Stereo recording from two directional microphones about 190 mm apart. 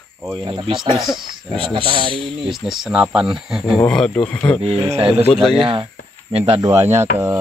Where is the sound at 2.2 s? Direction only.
Centre (ahead or behind).